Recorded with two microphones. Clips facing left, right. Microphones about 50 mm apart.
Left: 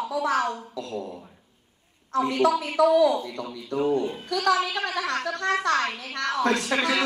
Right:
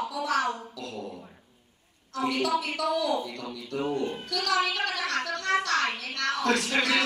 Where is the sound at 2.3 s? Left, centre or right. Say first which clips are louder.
Left 3 dB; left.